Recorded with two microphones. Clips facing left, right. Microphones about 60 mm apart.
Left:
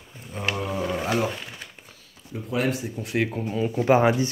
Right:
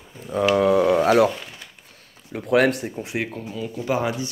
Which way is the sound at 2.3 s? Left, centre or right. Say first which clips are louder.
Right 7 dB; right.